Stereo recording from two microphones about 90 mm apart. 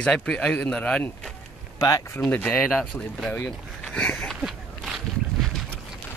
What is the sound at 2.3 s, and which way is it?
Speech, 15° left (ahead or behind).